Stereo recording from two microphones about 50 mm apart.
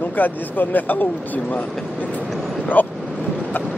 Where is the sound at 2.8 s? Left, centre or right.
Left.